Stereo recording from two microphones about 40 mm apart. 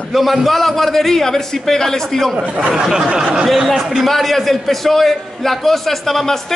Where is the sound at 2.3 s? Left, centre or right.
Right.